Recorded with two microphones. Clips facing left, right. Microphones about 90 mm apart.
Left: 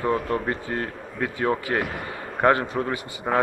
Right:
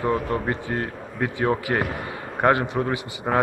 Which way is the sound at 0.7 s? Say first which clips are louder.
Right 1 dB; 20° right (ahead or behind).